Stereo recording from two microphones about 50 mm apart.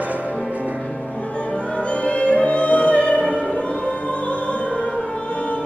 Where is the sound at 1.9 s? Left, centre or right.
Left.